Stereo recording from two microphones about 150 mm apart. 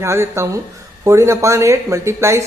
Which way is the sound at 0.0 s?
20° right (ahead or behind).